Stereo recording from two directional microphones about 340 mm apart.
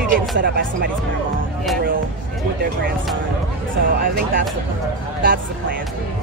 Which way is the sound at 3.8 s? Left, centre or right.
Right.